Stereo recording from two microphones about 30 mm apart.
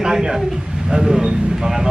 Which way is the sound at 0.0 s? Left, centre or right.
Centre.